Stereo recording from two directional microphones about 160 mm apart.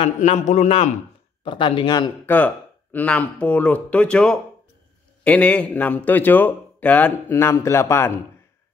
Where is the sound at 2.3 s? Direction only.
10° left (ahead or behind).